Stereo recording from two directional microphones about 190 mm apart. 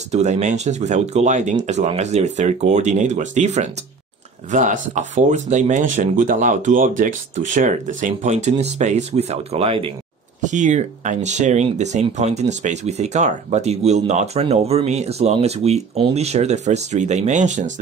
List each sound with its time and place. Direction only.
0.1 s speech: 35° right (ahead or behind)